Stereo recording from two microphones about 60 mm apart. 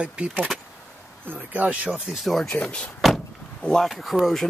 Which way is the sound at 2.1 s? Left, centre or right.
Centre.